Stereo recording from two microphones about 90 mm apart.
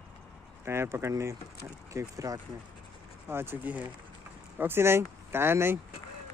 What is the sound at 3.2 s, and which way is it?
Speech, 25° right (ahead or behind).